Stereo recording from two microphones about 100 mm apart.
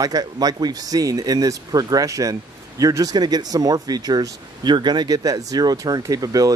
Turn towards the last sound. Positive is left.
turn(degrees=-35)  # may be behind; listen again after turning